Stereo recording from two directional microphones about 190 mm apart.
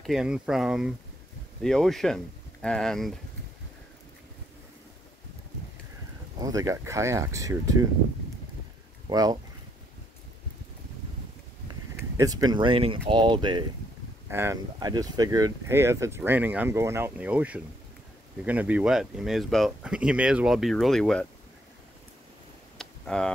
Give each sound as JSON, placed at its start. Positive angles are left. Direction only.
{"t": 0.0, "sound": "speech", "side_deg": 0}
{"t": 6.4, "sound": "speech", "side_deg": -15}
{"t": 9.1, "sound": "speech", "side_deg": -20}
{"t": 12.2, "sound": "speech", "side_deg": -20}
{"t": 22.8, "sound": "a sound", "side_deg": 5}